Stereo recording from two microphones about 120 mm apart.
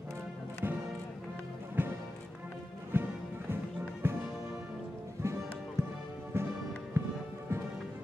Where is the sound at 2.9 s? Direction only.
15° right (ahead or behind).